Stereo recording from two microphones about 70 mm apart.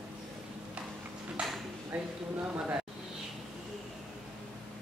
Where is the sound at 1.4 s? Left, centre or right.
Centre.